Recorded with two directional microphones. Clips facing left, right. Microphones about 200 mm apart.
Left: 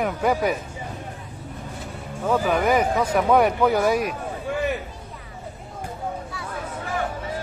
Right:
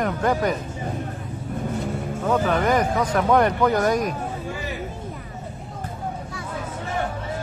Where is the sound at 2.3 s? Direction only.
5° left (ahead or behind).